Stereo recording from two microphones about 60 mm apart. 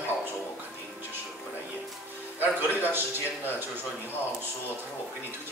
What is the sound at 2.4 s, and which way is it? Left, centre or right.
A man's voice, right.